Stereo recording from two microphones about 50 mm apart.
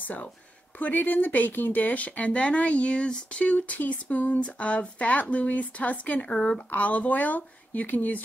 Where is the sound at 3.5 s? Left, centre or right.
Left.